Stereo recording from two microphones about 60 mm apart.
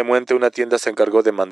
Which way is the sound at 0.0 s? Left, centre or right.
Centre.